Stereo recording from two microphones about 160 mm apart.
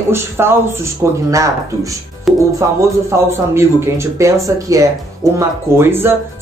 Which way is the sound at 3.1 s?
15° right (ahead or behind).